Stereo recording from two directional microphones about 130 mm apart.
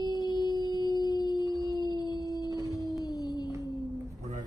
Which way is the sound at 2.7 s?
30° left (ahead or behind).